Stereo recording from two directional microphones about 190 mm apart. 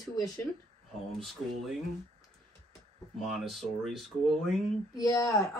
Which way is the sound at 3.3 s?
Centre (ahead or behind).